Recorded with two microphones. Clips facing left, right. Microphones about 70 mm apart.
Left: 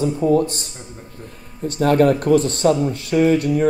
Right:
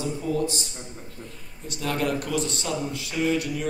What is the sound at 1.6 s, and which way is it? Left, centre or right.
Speech, left.